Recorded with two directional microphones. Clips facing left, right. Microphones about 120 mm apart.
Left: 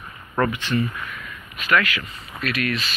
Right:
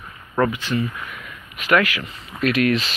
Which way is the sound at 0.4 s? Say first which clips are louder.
Right 1 dB; 10° right (ahead or behind).